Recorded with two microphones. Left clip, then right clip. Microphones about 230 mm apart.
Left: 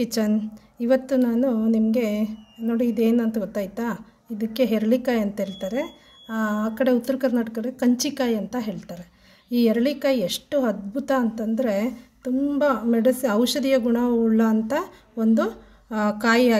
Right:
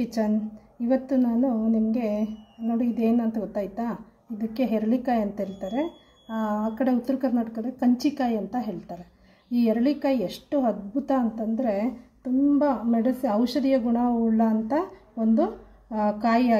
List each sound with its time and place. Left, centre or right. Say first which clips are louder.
0.0 s a woman's voice: left 2 dB; left